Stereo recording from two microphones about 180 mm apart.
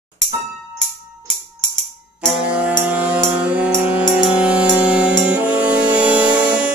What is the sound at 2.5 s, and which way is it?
Music, 10° right (ahead or behind).